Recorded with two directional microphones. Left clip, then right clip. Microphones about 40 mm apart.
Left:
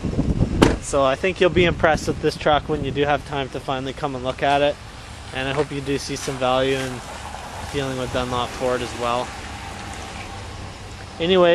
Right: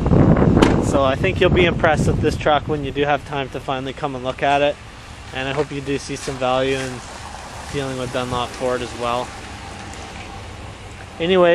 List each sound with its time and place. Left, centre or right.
0.6 s speech: right
2.5 s speech: right
5.9 s speech: right
6.4 s speech: centre
11.1 s speech: right